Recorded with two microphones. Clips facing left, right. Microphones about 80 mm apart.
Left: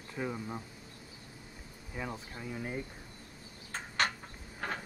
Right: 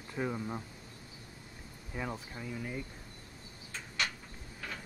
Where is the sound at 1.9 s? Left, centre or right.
Centre.